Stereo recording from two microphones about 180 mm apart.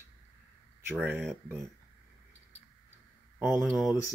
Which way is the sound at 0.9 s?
Centre (ahead or behind).